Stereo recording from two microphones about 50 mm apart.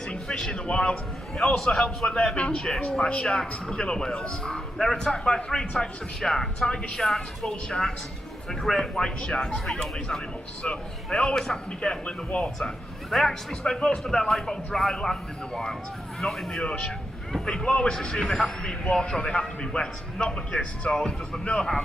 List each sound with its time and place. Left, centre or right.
0.1 s a sound: centre
1.4 s a man's voice: centre
8.6 s a man's voice: centre
16.6 s a man's voice: centre